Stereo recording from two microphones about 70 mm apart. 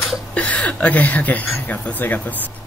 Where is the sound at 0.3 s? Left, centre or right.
Centre.